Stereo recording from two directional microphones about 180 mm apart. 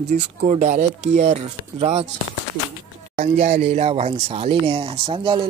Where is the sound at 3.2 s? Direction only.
40° right (ahead or behind).